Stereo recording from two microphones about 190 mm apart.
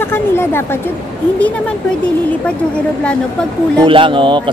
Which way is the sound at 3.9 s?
25° right (ahead or behind).